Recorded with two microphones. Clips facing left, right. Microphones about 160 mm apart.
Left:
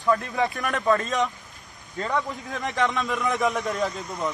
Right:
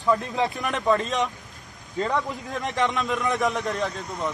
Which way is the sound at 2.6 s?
Centre (ahead or behind).